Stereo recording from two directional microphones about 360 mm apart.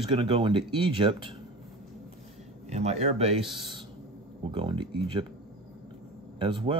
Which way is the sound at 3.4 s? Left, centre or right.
Centre.